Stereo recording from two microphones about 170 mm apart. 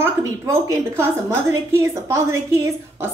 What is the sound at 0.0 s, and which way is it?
A woman's voice, 15° right (ahead or behind).